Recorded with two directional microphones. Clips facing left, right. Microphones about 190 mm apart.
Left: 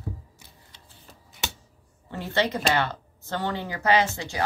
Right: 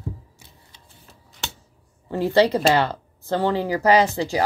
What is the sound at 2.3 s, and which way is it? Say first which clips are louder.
Speech: right 7 dB; 35° right (ahead or behind).